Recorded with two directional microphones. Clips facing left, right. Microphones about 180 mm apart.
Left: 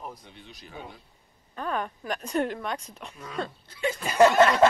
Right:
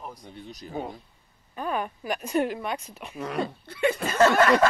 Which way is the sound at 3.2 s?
70° right (ahead or behind).